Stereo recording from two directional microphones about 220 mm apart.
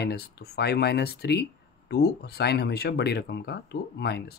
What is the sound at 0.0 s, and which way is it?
Speech, 50° left (ahead or behind).